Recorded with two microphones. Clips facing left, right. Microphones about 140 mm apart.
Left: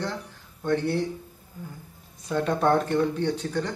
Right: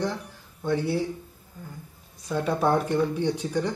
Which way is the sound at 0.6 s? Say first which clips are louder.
Left 1 dB; 5° right (ahead or behind).